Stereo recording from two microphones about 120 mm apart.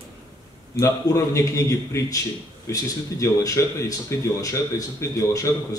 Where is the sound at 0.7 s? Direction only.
25° left (ahead or behind).